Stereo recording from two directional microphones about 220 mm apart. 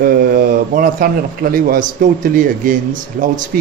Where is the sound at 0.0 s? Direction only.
40° right (ahead or behind).